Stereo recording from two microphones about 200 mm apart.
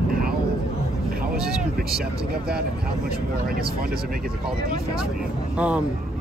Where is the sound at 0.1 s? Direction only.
50° right (ahead or behind).